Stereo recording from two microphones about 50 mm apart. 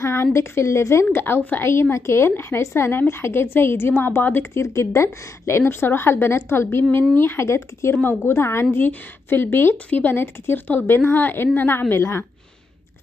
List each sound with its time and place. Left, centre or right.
0.0 s a woman's voice: left
1.1 s a woman's voice: left
1.6 s a woman's voice: left
4.6 s a woman's voice: left
7.4 s a woman's voice: left
7.9 s a woman's voice: left
8.2 s a woman's voice: left
8.7 s a woman's voice: left
9.8 s a woman's voice: left
10.1 s a woman's voice: left
11.9 s a woman's voice: left